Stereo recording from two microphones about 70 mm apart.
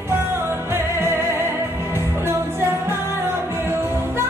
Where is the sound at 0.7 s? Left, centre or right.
Right.